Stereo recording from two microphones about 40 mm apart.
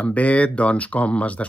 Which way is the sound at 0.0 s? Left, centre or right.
Left.